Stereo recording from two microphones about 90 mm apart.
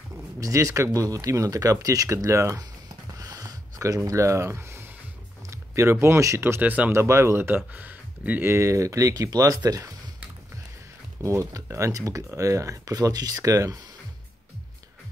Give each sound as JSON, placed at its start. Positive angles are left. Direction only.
{"t": 0.4, "sound": "speech", "side_deg": -40}
{"t": 3.2, "sound": "a sound", "side_deg": -45}
{"t": 5.5, "sound": "speech", "side_deg": -30}
{"t": 6.9, "sound": "speech", "side_deg": -30}
{"t": 11.2, "sound": "speech", "side_deg": -35}